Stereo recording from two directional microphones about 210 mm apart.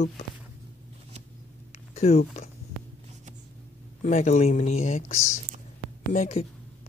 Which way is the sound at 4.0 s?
35° left (ahead or behind).